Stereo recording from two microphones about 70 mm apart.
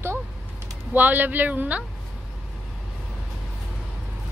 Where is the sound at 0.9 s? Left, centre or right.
Right.